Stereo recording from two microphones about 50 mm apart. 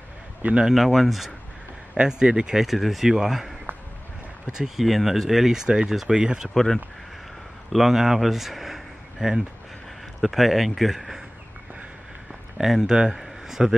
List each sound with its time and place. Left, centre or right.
0.4 s a man's voice: right
0.7 s speech: centre
2.0 s speech: centre
2.6 s speech: centre
4.6 s speech: centre
5.7 s speech: centre
6.5 s speech: centre
7.7 s speech: centre
12.5 s speech: centre
13.1 s a sound: centre